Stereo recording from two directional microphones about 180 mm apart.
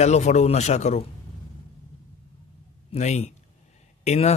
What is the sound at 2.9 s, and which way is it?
A man's voice, 35° left (ahead or behind).